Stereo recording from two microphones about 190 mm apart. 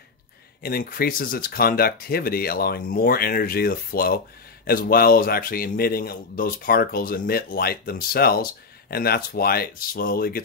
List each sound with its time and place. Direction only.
0.6 s a man's voice: 50° left (ahead or behind)